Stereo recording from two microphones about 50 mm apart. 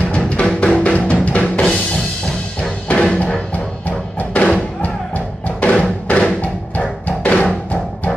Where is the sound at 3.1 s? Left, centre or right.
Centre.